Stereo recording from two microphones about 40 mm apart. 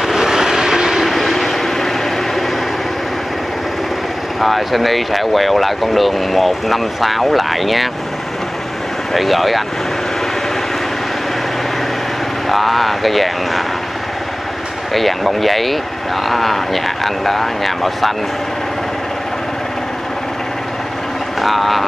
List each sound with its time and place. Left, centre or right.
0.0 s vehicle: centre
1.0 s vehicle: centre
4.4 s speech: centre
9.1 s speech: centre
12.4 s speech: centre
14.9 s speech: centre
21.4 s speech: centre